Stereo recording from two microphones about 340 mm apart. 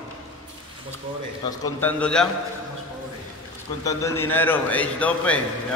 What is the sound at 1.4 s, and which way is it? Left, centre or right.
Speech, centre.